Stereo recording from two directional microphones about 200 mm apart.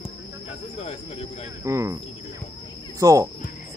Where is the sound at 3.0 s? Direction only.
15° right (ahead or behind).